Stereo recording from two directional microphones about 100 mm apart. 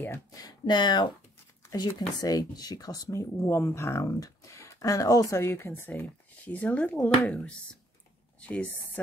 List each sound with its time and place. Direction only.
0.3 s speech: 40° left (ahead or behind)
4.0 s speech: 35° left (ahead or behind); by 9.0 s 15° left (ahead or behind)